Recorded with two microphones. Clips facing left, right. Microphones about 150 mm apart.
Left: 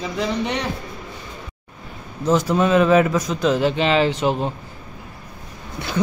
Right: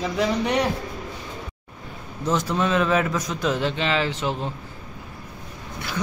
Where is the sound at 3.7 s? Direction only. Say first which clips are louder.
Left 6 dB; 20° left (ahead or behind).